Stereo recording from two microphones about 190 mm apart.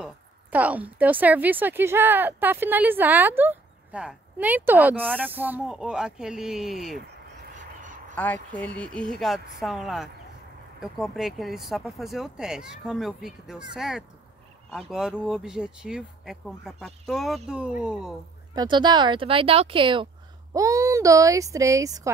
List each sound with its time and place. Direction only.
0.0 s a woman's voice: 10° right (ahead or behind)
7.5 s duck: 40° right (ahead or behind)
8.5 s speech: 5° left (ahead or behind)
18.5 s a woman's voice: 20° right (ahead or behind)